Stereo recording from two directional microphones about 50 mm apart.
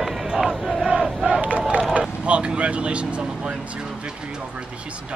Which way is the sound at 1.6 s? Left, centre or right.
Centre.